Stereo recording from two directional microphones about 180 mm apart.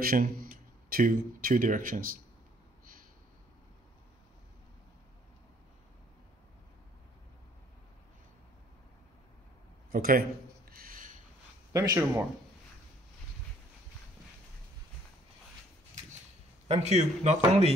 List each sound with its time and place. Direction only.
0.0 s speech: 55° right (ahead or behind)
9.9 s a man's voice: 55° right (ahead or behind)
10.7 s a sound: 55° right (ahead or behind)
11.7 s speech: 15° right (ahead or behind)
16.6 s speech: 35° right (ahead or behind)